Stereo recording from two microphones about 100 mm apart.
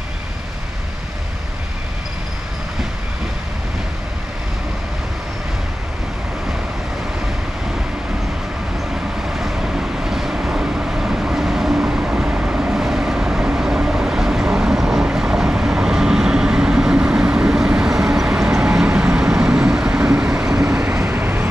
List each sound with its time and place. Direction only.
9.4 s vehicle: 5° right (ahead or behind)
20.9 s vehicle: 25° right (ahead or behind)